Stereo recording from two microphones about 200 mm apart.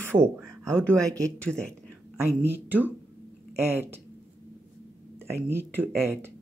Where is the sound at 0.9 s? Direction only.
5° left (ahead or behind).